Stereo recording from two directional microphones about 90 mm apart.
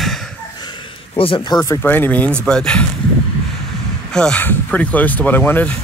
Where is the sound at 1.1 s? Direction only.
90° left.